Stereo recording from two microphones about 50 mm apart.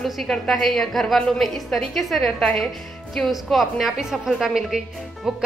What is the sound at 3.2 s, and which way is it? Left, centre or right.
A woman's voice, centre.